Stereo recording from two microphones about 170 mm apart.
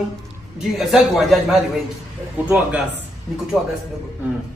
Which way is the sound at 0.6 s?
Centre (ahead or behind).